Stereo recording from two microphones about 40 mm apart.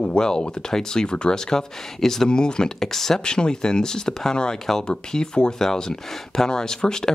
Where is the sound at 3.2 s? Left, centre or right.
Centre.